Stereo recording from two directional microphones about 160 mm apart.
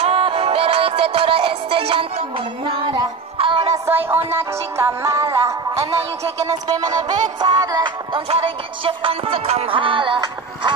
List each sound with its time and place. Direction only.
0.0 s music: 35° right (ahead or behind)
3.7 s music: 15° right (ahead or behind); by 10.7 s 30° right (ahead or behind)